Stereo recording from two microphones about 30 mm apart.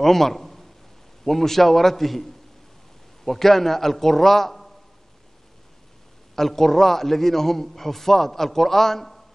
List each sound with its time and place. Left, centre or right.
0.0 s a sound: centre
1.2 s a man's voice: centre
3.3 s a man's voice: centre
6.3 s a man's voice: centre